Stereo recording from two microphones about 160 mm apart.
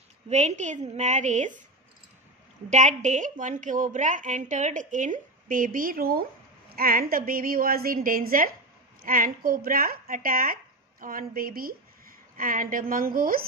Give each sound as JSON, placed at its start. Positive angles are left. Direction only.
{"t": 0.3, "sound": "a woman's voice", "side_deg": -45}
{"t": 2.7, "sound": "a woman's voice", "side_deg": -50}